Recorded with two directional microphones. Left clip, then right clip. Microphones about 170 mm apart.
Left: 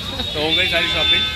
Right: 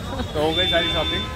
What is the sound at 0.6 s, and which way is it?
Speech, 5° right (ahead or behind).